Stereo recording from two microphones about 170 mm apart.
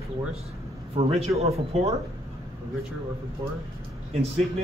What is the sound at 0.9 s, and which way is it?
Speech, 40° right (ahead or behind).